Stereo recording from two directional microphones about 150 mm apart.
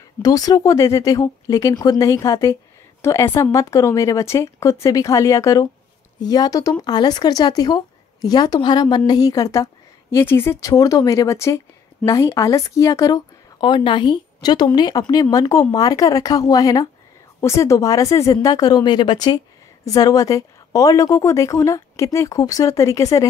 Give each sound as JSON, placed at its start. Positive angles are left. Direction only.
{"t": 0.2, "sound": "speech", "side_deg": 25}